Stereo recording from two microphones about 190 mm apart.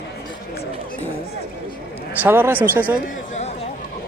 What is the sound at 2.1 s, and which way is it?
Speech, 10° right (ahead or behind).